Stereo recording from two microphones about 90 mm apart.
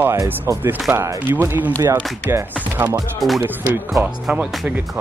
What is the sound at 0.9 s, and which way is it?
Speech, 25° right (ahead or behind).